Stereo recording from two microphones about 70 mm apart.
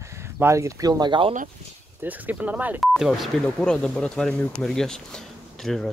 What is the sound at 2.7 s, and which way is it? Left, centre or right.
Speech, centre.